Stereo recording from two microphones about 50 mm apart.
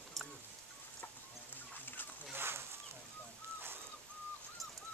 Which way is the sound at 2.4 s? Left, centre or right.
Right.